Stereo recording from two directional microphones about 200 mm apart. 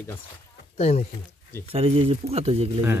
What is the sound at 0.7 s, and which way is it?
Speech, 35° left (ahead or behind).